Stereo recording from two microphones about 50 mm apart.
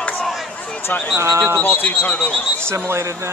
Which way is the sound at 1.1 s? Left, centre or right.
Right.